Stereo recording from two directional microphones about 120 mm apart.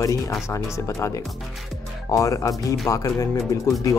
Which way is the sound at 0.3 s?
25° left (ahead or behind).